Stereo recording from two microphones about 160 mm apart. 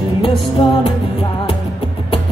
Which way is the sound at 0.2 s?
35° left (ahead or behind).